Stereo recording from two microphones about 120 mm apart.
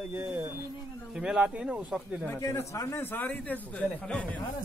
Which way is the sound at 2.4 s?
30° left (ahead or behind).